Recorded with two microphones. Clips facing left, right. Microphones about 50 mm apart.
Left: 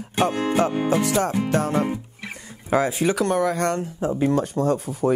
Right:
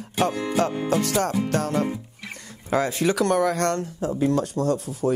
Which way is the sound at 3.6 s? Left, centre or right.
Centre.